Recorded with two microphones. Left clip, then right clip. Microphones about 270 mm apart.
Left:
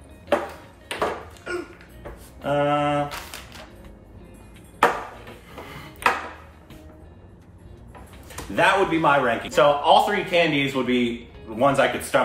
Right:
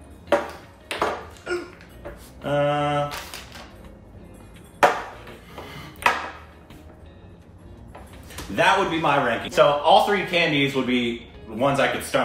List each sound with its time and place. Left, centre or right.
0.8 s a sound: centre
2.4 s speech: centre
4.7 s ping: centre
8.5 s speech: centre